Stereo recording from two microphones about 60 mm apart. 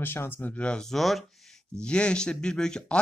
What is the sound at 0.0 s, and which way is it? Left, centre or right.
Speech, left.